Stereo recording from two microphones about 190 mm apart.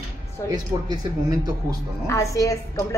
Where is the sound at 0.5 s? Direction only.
20° right (ahead or behind).